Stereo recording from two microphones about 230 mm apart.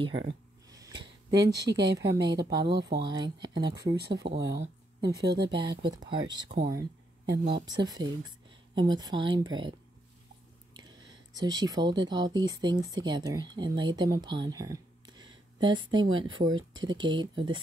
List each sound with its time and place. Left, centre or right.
0.3 s a sound: centre
1.6 s speech: right
2.0 s speech: centre
3.8 s speech: right
5.6 s speech: right
6.4 s speech: right
7.6 s speech: centre
11.3 s speech: centre